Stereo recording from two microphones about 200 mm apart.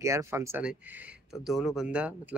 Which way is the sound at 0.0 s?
15° right (ahead or behind).